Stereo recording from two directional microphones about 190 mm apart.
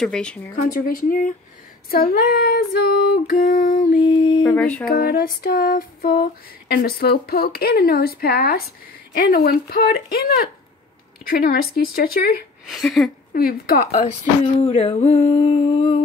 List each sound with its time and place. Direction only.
0.0 s speech: 5° left (ahead or behind)
0.6 s speech: 50° left (ahead or behind)
1.9 s female singing: 50° left (ahead or behind)
4.0 s a sound: 25° left (ahead or behind)
4.6 s speech: 5° left (ahead or behind)
4.8 s speech: 50° left (ahead or behind)
12.7 s speech: centre (ahead or behind)
13.3 s speech: 50° left (ahead or behind)
14.0 s a sound: 35° left (ahead or behind)